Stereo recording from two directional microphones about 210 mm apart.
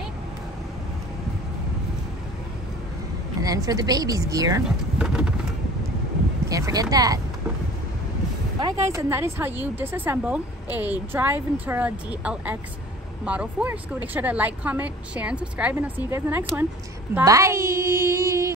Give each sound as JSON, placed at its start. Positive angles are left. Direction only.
{"t": 3.3, "sound": "a woman's voice", "side_deg": -15}
{"t": 4.6, "sound": "speech", "side_deg": -5}
{"t": 6.5, "sound": "a woman's voice", "side_deg": -15}
{"t": 8.5, "sound": "a woman's voice", "side_deg": -15}